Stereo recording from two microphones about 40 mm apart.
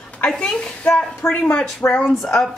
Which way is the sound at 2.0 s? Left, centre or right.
Centre.